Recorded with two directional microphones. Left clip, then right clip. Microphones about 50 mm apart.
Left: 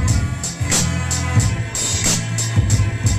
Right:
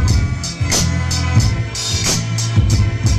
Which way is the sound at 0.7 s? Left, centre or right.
Left.